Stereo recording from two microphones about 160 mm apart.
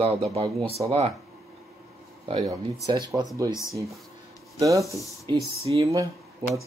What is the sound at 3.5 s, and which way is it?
Speech, 20° left (ahead or behind).